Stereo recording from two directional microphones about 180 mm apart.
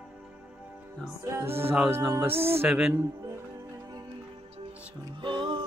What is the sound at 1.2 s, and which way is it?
Music, 15° right (ahead or behind).